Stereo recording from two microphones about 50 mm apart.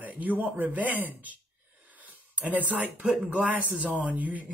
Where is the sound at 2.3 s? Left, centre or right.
Right.